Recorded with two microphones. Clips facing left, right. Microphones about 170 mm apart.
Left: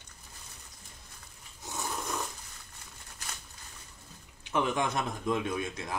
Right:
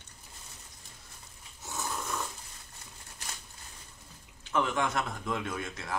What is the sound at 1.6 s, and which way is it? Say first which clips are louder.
Snoring: even; 20° left (ahead or behind).